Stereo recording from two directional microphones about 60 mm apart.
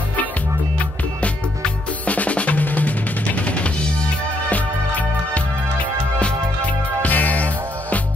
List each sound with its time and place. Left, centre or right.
1.2 s drum: left
4.5 s music: left
7.0 s music: left